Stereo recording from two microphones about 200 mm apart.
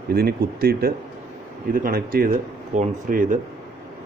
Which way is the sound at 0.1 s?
50° right (ahead or behind).